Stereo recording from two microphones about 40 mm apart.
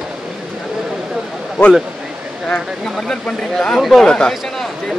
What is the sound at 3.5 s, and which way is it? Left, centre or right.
Speech, centre.